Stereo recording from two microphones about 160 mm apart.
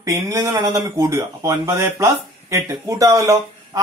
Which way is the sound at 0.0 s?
20° right (ahead or behind).